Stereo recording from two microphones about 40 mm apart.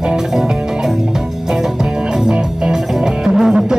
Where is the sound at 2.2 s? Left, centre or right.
Centre.